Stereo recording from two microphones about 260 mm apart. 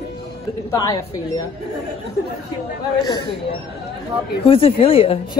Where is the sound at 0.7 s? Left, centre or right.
Centre.